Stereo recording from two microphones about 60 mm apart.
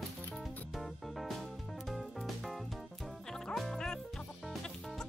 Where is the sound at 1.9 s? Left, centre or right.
Centre.